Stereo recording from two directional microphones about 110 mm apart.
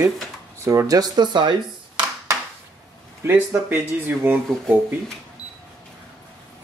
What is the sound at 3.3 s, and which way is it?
Speech, 20° right (ahead or behind).